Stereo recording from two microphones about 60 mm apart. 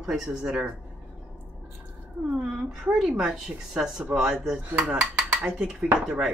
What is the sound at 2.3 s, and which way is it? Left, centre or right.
Speech, centre.